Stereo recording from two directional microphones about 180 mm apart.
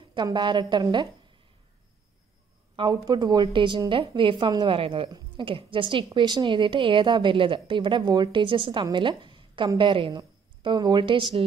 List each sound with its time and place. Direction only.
0.1 s a woman's voice: 25° right (ahead or behind)
2.7 s a woman's voice: 25° right (ahead or behind)